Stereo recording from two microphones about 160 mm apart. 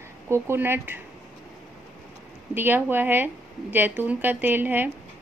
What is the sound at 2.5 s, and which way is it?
A woman's voice, 15° right (ahead or behind).